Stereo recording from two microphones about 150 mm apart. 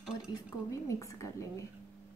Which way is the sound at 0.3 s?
20° left (ahead or behind).